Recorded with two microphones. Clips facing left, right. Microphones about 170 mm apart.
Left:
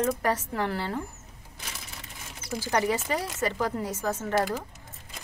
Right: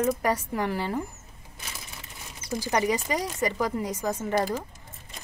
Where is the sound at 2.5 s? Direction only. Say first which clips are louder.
Right 1 dB; 15° right (ahead or behind).